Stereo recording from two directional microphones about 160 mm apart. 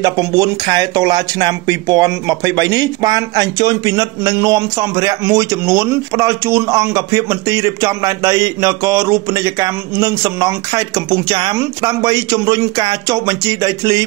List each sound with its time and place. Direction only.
0.0 s speech: 25° right (ahead or behind)